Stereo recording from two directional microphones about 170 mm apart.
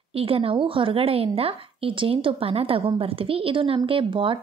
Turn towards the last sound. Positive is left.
turn(degrees=-30)  # may be behind; listen again after turning